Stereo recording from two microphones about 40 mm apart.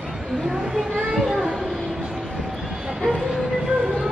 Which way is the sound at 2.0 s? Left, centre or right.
Centre.